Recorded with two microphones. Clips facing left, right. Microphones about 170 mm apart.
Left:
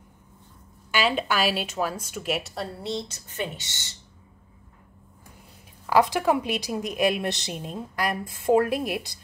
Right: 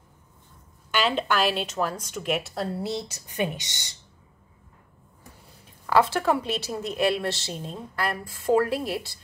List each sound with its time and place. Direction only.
0.9 s a woman's voice: 5° left (ahead or behind); by 3.9 s 15° right (ahead or behind)
5.9 s a woman's voice: 15° left (ahead or behind)